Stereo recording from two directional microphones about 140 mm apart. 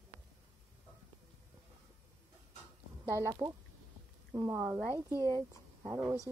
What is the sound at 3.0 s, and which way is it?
Speech, 20° right (ahead or behind).